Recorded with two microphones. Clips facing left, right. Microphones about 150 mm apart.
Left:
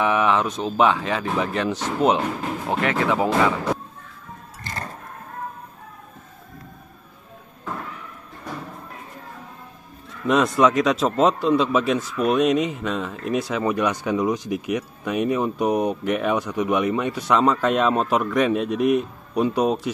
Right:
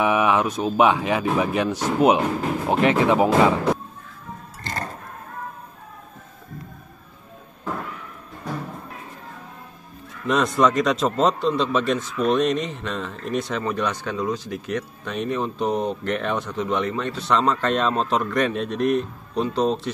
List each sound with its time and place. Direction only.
0.0 s speech: 10° right (ahead or behind)
10.2 s a man's voice: centre (ahead or behind)